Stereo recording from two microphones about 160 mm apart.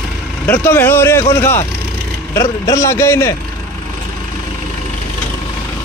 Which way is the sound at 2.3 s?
20° left (ahead or behind).